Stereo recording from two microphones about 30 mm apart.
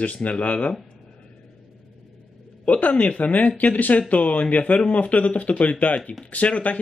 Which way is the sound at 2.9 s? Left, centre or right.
Left.